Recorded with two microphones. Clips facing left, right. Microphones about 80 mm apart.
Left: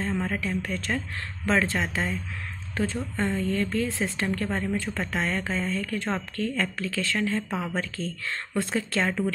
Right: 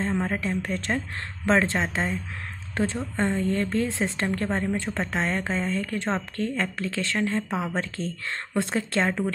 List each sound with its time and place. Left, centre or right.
0.0 s speech: right